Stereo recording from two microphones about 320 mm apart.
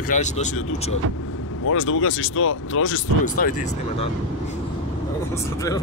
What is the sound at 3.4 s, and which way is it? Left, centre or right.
Speech, left.